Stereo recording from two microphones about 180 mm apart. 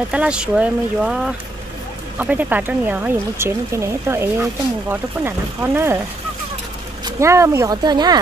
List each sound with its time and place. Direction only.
0.1 s speech: 5° right (ahead or behind)
7.1 s speech: 15° right (ahead or behind)